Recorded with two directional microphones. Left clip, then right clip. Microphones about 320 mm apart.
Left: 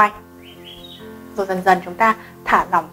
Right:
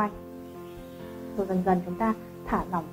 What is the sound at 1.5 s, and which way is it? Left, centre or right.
Speech, centre.